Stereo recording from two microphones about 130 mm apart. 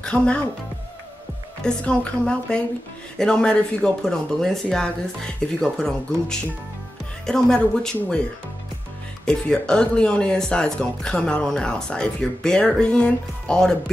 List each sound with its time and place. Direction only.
0.0 s speech: 10° left (ahead or behind)
1.6 s speech: 5° left (ahead or behind)
9.2 s speech: 5° left (ahead or behind)